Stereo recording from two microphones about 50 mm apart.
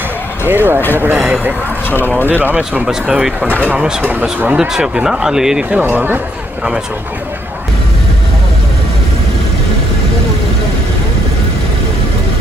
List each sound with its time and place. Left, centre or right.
0.5 s speech: right
1.1 s speech: centre
1.9 s speech: left
2.2 s speech: right
2.8 s speech: centre
4.0 s speech: right
4.6 s speech: centre
5.8 s speech: right